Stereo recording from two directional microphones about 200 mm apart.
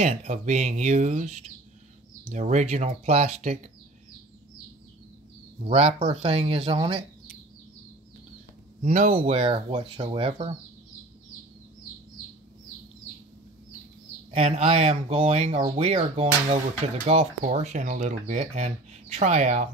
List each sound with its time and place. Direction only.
0.0 s speech: 35° right (ahead or behind)
2.3 s speech: 35° right (ahead or behind)
5.7 s speech: 35° right (ahead or behind)
8.8 s speech: 35° right (ahead or behind)
14.3 s speech: 30° right (ahead or behind)